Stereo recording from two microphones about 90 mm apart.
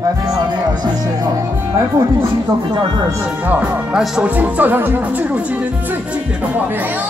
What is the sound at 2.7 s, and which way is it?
Speech, 60° right (ahead or behind).